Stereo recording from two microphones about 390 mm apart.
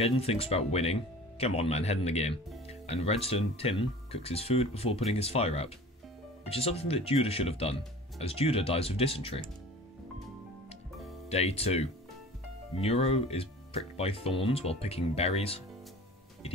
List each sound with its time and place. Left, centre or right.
0.0 s speech: centre
11.2 s speech: centre
16.4 s music: centre